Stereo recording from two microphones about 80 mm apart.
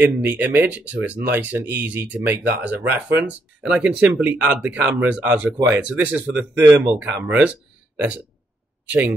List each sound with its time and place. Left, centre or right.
0.0 s speech: centre
8.8 s speech: right